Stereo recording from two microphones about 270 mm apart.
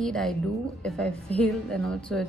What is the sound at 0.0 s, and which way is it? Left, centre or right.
A woman's voice, centre.